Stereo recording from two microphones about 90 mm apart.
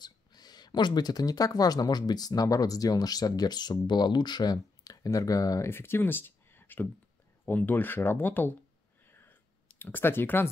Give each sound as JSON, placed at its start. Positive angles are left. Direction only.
{"t": 0.0, "sound": "speech", "side_deg": 50}
{"t": 5.7, "sound": "speech", "side_deg": 25}
{"t": 9.0, "sound": "clicking", "side_deg": 25}